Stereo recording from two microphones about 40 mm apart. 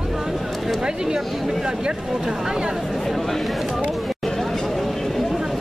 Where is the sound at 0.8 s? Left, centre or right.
Centre.